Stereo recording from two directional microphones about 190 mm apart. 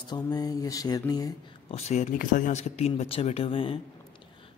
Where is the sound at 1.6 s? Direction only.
35° left (ahead or behind).